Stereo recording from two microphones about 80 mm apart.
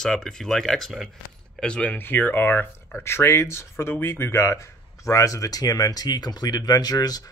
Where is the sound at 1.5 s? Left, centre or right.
Centre.